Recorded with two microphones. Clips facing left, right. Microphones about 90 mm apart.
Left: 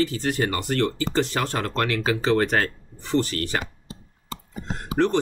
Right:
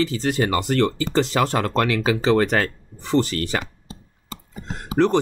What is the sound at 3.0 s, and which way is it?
Speech, 90° right.